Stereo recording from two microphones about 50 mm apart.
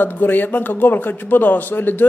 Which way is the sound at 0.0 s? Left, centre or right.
Left.